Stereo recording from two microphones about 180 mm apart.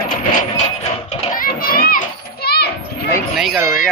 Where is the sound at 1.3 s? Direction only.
55° left (ahead or behind).